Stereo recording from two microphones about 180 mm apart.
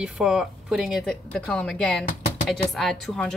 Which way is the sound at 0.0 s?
5° right (ahead or behind).